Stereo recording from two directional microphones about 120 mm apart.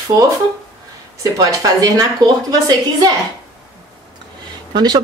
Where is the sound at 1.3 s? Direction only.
30° right (ahead or behind).